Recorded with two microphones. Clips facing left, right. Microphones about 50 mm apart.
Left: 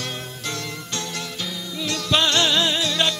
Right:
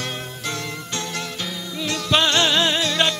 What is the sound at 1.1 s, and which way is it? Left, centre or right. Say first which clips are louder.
Music: right 2 dB; right.